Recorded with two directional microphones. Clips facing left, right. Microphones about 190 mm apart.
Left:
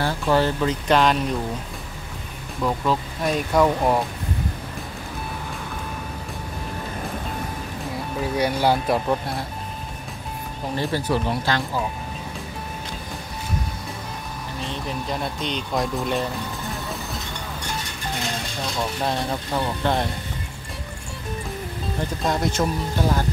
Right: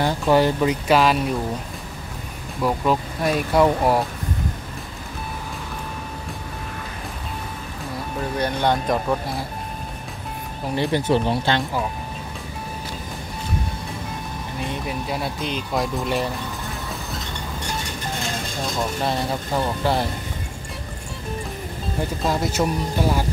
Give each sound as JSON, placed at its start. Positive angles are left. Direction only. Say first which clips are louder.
{"t": 0.0, "sound": "speech", "louder": "right 3 dB", "side_deg": -15}
{"t": 2.6, "sound": "speech", "louder": "right 2 dB", "side_deg": -15}
{"t": 8.2, "sound": "speech", "louder": "left 1 dB", "side_deg": 10}
{"t": 10.8, "sound": "speech", "louder": "right 4 dB", "side_deg": -20}
{"t": 14.6, "sound": "speech", "louder": "right 2 dB", "side_deg": -10}
{"t": 18.8, "sound": "speech", "louder": "right 1 dB", "side_deg": 0}
{"t": 22.2, "sound": "speech", "louder": "even", "side_deg": -5}